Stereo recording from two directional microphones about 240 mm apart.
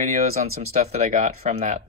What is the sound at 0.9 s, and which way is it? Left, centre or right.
Speech, right.